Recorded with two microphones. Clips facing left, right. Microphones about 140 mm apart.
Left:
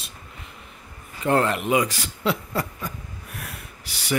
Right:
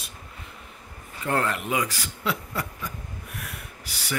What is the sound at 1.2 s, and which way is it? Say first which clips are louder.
Speech: left 5 dB; 25° left (ahead or behind).